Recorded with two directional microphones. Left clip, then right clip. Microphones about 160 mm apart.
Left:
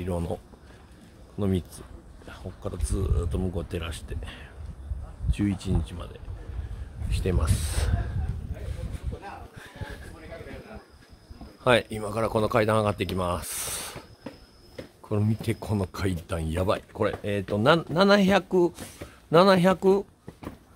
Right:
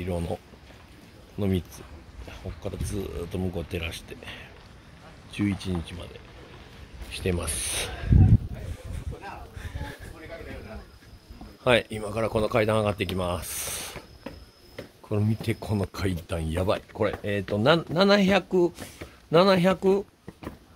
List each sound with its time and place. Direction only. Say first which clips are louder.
0.0 s speech: even; 10° left (ahead or behind)
2.2 s speech: even; centre (ahead or behind)
7.1 s speech: right 1 dB; centre (ahead or behind)
9.1 s a sound: even; 25° right (ahead or behind)
11.6 s speech: even; 10° left (ahead or behind)
15.0 s speech: even; centre (ahead or behind)